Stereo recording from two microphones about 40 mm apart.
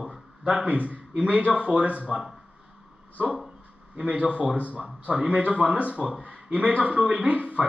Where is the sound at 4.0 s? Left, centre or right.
Right.